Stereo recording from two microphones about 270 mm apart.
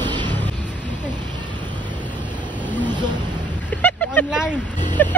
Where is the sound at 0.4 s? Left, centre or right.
Centre.